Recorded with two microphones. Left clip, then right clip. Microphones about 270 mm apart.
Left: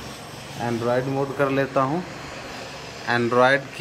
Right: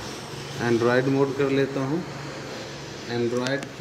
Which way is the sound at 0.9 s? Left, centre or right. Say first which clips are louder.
Even; centre.